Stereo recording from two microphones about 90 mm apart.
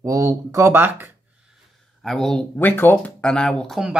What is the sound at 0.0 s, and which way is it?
Speech, 35° right (ahead or behind).